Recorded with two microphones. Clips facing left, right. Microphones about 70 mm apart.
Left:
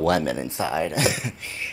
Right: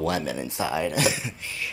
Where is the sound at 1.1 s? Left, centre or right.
Left.